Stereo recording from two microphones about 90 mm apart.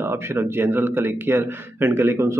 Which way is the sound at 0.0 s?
25° right (ahead or behind).